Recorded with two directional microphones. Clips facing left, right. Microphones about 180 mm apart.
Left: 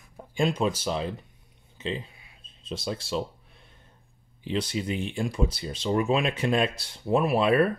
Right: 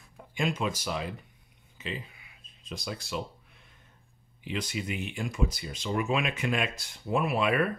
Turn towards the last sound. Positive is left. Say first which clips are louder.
# left 5 dB
turn(degrees=35)  # may be behind; listen again after turning